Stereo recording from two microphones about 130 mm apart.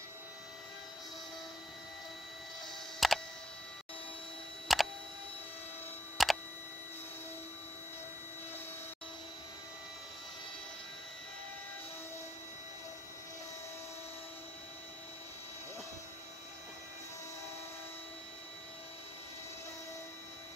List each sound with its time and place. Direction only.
3.0 s tick: centre (ahead or behind)
4.7 s single-lens reflex camera: centre (ahead or behind)
6.2 s tick: centre (ahead or behind)